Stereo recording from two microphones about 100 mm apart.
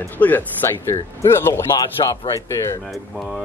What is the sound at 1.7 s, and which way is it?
Speech, 40° left (ahead or behind).